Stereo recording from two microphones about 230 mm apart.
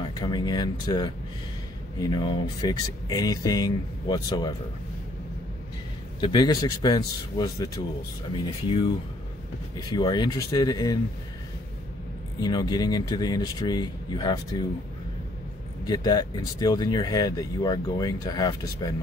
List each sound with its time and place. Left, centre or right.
0.1 s speech: centre
6.2 s speech: centre
9.9 s speech: centre
12.4 s speech: centre
15.9 s speech: centre